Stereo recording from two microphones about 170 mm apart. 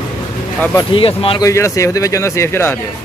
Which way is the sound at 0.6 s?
20° left (ahead or behind).